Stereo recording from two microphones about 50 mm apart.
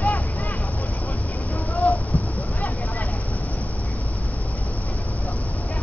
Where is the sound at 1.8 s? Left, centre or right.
Left.